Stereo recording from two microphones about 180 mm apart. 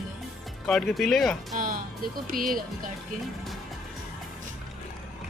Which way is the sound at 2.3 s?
50° right (ahead or behind).